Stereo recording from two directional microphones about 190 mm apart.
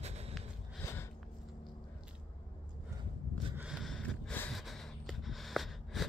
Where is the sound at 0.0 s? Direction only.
35° right (ahead or behind).